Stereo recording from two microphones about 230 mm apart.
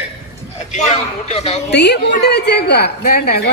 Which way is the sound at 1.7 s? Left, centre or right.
Left.